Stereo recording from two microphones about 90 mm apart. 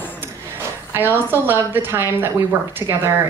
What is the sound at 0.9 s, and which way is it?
A woman's voice, 25° right (ahead or behind).